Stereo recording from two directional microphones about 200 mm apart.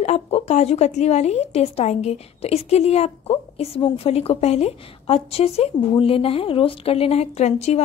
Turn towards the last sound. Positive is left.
turn(degrees=30)  # may be behind; listen again after turning